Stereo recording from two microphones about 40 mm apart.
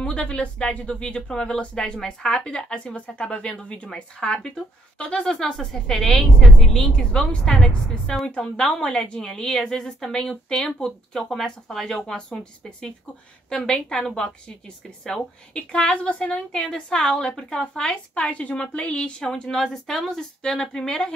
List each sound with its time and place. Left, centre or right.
0.0 s a woman's voice: left
11.1 s speech: centre
12.3 s a woman's voice: left
16.5 s speech: centre
18.1 s a woman's voice: left